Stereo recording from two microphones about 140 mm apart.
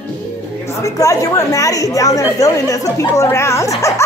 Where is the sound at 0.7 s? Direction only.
25° left (ahead or behind).